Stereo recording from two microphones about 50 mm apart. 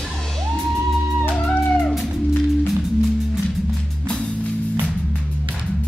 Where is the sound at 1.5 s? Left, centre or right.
Left.